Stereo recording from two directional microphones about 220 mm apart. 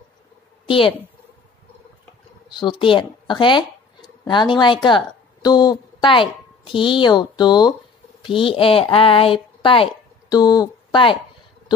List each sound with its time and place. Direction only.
0.7 s a woman's voice: 25° left (ahead or behind)
2.5 s speech: 20° left (ahead or behind)